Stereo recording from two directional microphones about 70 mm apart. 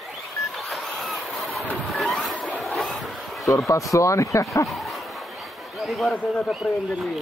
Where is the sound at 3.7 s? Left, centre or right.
Left.